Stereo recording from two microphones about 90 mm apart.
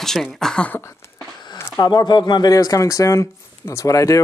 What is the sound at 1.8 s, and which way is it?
Speech, 55° left (ahead or behind).